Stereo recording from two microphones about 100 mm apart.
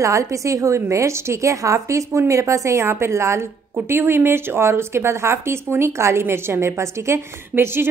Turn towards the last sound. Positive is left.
turn(degrees=-25)  # may be behind; listen again after turning